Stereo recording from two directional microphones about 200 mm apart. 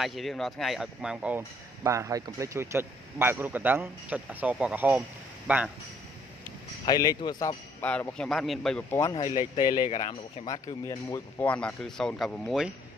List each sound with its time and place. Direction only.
0.0 s speech: centre (ahead or behind)
6.9 s speech: 20° left (ahead or behind)
7.8 s a man's voice: 5° left (ahead or behind)
9.7 s speech: 40° left (ahead or behind)
10.4 s speech: 15° left (ahead or behind); by 12.7 s centre (ahead or behind)